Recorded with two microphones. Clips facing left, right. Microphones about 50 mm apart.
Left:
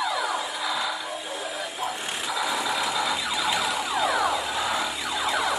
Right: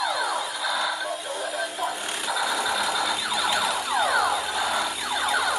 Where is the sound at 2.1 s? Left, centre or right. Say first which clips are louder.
Even; centre.